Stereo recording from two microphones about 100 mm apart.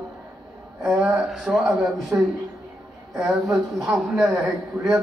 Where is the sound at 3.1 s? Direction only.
5° right (ahead or behind).